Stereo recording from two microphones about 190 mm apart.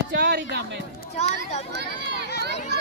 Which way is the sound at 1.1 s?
35° left (ahead or behind).